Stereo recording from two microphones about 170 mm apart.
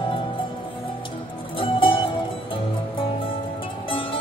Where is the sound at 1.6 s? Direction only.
30° left (ahead or behind).